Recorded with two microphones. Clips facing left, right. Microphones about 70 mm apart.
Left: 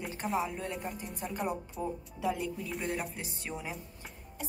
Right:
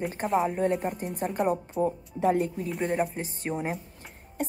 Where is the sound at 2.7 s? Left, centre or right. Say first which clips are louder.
Right 7 dB; centre.